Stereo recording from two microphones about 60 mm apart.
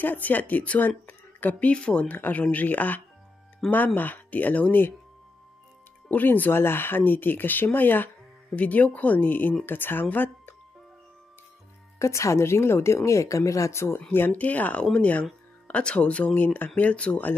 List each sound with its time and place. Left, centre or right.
0.0 s speech: left
2.0 s speech: left
6.0 s speech: left
12.0 s speech: left
13.9 s speech: left